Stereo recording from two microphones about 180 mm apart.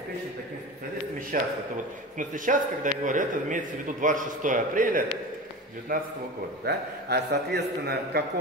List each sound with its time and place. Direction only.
1.3 s a man's voice: 50° right (ahead or behind)
6.6 s a man's voice: 65° right (ahead or behind)